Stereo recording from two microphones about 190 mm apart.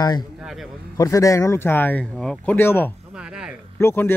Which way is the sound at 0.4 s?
Centre (ahead or behind).